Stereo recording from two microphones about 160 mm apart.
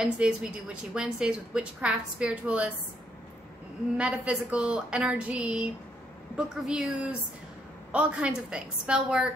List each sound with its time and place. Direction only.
0.0 s a woman's voice: 5° right (ahead or behind)
4.0 s a woman's voice: 5° right (ahead or behind)